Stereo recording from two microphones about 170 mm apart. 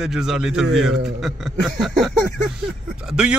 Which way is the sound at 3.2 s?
5° right (ahead or behind).